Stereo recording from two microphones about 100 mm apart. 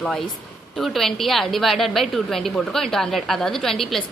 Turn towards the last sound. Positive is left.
turn(degrees=5)  # may be behind; listen again after turning